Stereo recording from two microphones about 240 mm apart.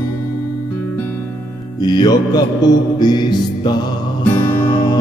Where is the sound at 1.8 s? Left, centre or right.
Centre.